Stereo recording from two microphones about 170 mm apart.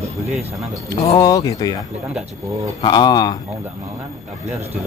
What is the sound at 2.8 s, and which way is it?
Speech, 25° left (ahead or behind).